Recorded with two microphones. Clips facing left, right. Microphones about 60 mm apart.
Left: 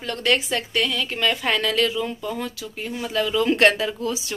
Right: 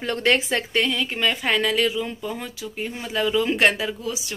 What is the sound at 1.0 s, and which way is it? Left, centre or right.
Speech, centre.